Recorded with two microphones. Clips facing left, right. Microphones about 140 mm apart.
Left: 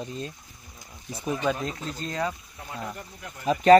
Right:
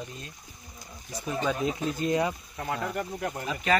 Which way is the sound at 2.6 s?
70° right (ahead or behind).